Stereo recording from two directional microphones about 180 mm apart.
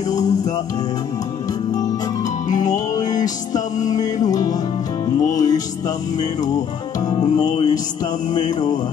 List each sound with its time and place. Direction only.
2.5 s music: 20° left (ahead or behind)
7.3 s music: 25° left (ahead or behind)